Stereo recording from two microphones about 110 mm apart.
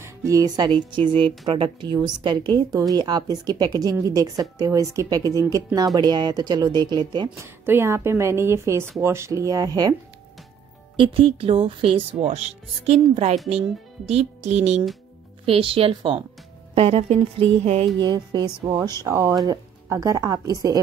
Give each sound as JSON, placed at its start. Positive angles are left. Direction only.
{"t": 0.0, "sound": "speech", "side_deg": -30}
{"t": 0.7, "sound": "a woman's voice", "side_deg": -45}
{"t": 7.3, "sound": "a woman's voice", "side_deg": -20}
{"t": 11.0, "sound": "speech", "side_deg": -55}
{"t": 13.1, "sound": "a woman's voice", "side_deg": -90}
{"t": 13.5, "sound": "speech", "side_deg": -70}
{"t": 15.4, "sound": "speech", "side_deg": -55}
{"t": 18.0, "sound": "a woman's voice", "side_deg": -40}